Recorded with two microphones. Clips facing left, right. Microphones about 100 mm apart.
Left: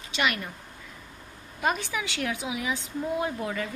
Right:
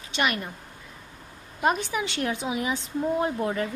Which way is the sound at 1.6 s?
20° right (ahead or behind).